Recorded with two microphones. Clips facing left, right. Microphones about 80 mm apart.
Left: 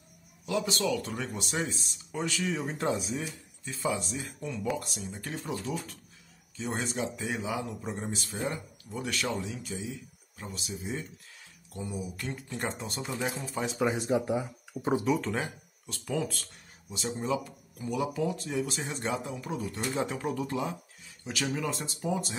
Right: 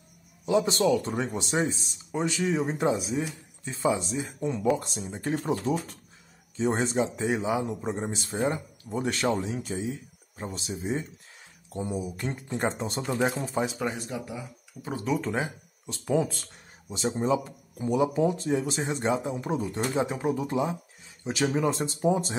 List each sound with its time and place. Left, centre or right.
0.5 s speech: right
3.6 s speech: right
5.3 s speech: right
6.5 s a man's voice: right
13.7 s speech: centre
13.9 s speech: left
15.0 s speech: centre
15.9 s a man's voice: right